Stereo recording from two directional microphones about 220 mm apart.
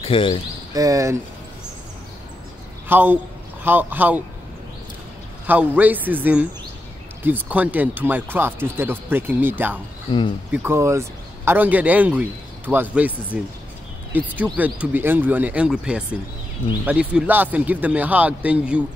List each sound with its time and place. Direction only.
0.0 s cricket: 25° left (ahead or behind)
0.7 s a man's voice: 15° right (ahead or behind)
2.9 s a man's voice: 10° right (ahead or behind)
5.5 s a man's voice: 10° right (ahead or behind)